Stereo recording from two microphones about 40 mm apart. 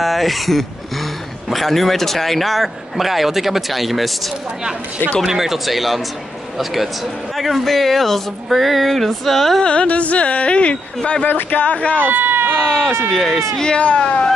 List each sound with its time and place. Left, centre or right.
0.0 s speech: centre
5.2 s speech: centre
9.6 s speech: left
9.8 s speech: left
11.2 s speech: left
12.0 s speech: right
12.5 s speech: centre
13.1 s speech: centre
13.7 s speech: left